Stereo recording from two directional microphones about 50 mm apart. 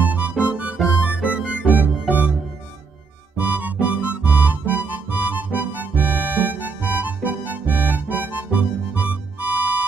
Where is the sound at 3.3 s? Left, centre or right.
Right.